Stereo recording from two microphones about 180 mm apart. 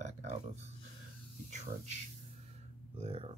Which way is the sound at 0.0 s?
40° right (ahead or behind).